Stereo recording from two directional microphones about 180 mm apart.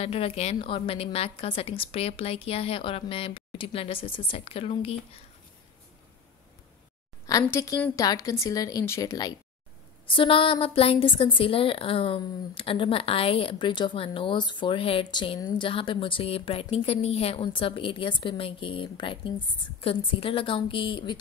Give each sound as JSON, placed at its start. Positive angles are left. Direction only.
{"t": 0.0, "sound": "a woman's voice", "side_deg": 35}
{"t": 7.2, "sound": "a woman's voice", "side_deg": 20}